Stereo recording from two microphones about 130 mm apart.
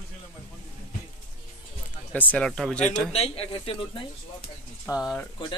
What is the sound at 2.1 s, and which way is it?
Speech, 10° left (ahead or behind).